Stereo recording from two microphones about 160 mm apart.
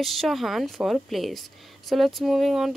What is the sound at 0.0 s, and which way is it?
A woman's voice, centre (ahead or behind).